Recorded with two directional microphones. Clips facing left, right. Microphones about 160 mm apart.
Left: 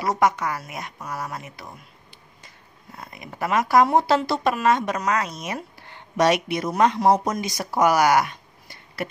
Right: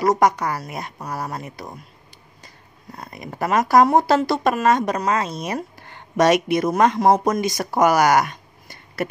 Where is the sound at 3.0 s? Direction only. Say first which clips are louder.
Right 3 dB; 40° right (ahead or behind).